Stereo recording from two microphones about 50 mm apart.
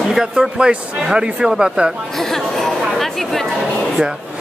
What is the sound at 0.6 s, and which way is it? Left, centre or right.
A man's voice, centre.